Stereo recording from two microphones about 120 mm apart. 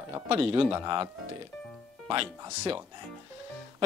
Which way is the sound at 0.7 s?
35° right (ahead or behind).